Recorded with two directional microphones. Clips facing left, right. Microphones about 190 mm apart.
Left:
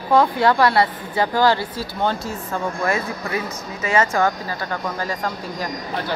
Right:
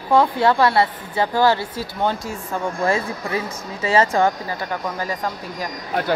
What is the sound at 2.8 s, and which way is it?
A woman's voice, 30° right (ahead or behind).